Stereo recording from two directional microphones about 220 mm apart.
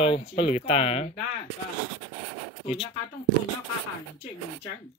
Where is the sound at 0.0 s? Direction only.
25° left (ahead or behind).